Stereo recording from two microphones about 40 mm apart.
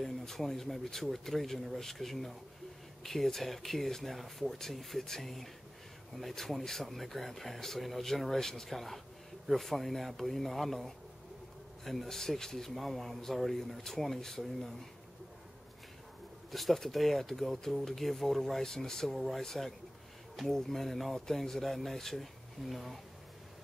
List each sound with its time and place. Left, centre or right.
0.2 s speech: centre
16.5 s speech: centre